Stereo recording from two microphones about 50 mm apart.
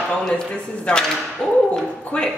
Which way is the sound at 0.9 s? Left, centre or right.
Left.